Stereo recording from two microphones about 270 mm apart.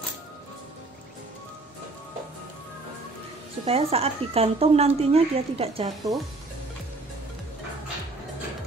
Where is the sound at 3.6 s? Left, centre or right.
Right.